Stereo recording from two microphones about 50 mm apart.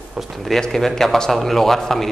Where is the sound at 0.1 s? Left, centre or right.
Centre.